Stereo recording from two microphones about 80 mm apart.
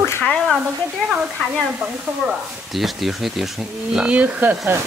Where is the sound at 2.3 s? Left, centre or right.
Centre.